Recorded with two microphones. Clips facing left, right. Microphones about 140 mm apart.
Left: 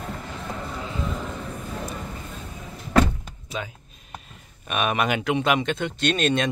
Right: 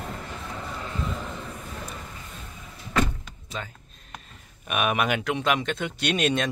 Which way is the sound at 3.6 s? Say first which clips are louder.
Left 4 dB; 10° left (ahead or behind).